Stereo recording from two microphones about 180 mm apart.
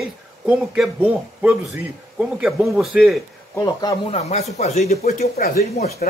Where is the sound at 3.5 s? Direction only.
20° left (ahead or behind).